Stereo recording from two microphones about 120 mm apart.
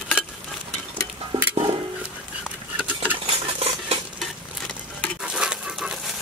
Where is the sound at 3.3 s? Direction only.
55° right (ahead or behind).